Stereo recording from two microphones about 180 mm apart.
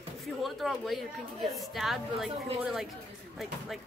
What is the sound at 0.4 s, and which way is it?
Speech, centre (ahead or behind).